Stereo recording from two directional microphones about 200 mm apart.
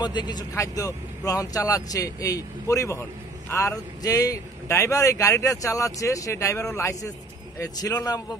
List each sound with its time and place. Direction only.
0.0 s speech: 20° left (ahead or behind)